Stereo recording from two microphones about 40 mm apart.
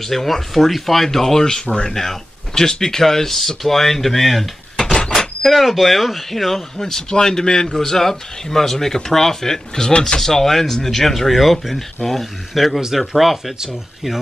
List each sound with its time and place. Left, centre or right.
0.0 s speech: centre; by 10.2 s left
10.2 s speech: centre